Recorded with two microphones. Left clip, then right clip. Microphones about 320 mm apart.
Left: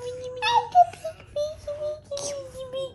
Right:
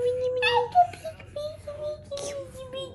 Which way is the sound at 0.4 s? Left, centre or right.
Left.